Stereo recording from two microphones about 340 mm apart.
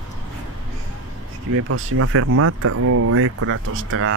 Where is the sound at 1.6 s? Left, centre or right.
Right.